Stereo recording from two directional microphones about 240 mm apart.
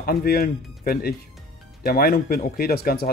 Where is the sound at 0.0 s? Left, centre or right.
Left.